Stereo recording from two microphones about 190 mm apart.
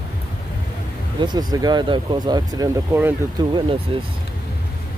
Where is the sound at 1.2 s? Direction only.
20° right (ahead or behind).